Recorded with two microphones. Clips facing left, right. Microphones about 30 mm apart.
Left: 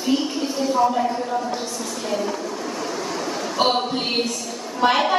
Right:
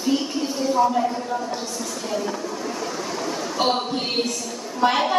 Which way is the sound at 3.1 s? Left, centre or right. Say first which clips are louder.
Left 3 dB; centre.